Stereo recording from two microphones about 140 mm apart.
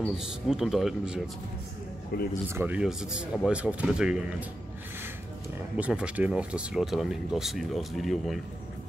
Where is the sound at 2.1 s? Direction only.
90° left.